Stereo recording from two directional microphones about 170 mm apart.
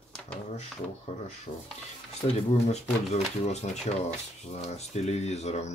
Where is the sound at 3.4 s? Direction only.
40° left (ahead or behind).